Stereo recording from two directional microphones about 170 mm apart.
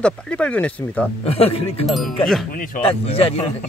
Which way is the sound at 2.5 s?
55° left (ahead or behind).